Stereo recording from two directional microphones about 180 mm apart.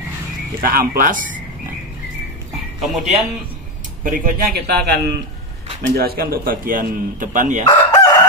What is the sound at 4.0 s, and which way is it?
A man's voice, 50° right (ahead or behind).